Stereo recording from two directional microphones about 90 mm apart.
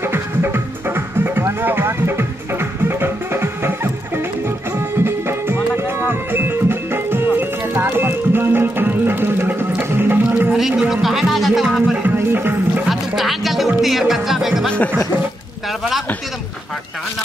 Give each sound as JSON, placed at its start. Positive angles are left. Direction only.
{"t": 0.0, "sound": "music", "side_deg": -25}
{"t": 10.5, "sound": "a sound", "side_deg": -5}
{"t": 12.0, "sound": "music", "side_deg": -25}
{"t": 12.8, "sound": "music", "side_deg": 0}